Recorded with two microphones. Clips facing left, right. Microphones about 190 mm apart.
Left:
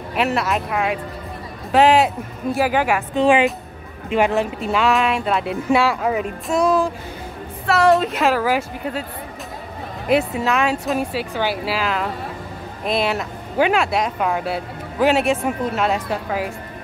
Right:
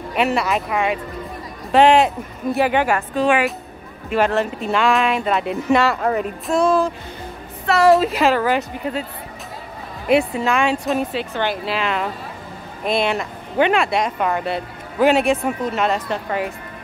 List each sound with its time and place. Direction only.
0.1 s speech: centre (ahead or behind)
3.2 s speech: 25° left (ahead or behind)
4.1 s speech: 15° left (ahead or behind)
4.6 s speech: 5° left (ahead or behind)
10.0 s speech: centre (ahead or behind)